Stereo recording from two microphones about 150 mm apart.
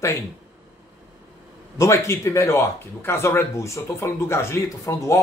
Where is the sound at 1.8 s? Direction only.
20° left (ahead or behind).